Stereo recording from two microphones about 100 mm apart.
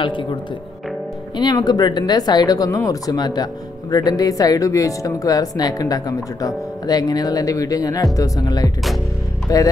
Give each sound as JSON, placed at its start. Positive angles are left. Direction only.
{"t": 0.0, "sound": "speech", "side_deg": 55}
{"t": 1.3, "sound": "speech", "side_deg": 45}